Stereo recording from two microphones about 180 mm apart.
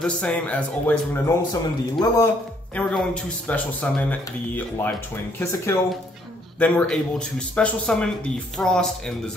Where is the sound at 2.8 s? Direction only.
5° left (ahead or behind).